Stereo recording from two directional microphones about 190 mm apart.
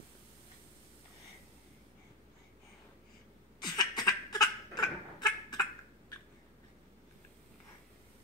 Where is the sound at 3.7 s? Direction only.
20° left (ahead or behind).